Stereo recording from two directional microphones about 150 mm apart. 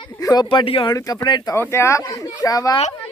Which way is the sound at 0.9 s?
25° left (ahead or behind).